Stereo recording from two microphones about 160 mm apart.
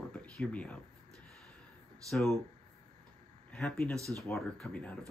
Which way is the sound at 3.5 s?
5° left (ahead or behind).